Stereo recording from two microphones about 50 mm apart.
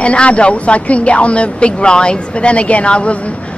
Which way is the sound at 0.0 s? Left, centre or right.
Left.